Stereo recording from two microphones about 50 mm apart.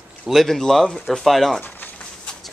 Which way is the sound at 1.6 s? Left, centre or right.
Left.